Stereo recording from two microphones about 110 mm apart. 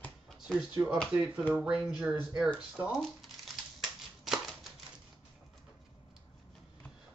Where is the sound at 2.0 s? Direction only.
5° right (ahead or behind).